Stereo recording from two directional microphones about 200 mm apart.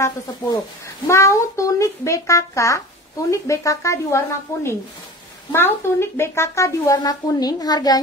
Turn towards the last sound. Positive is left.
turn(degrees=20)  # may be behind; listen again after turning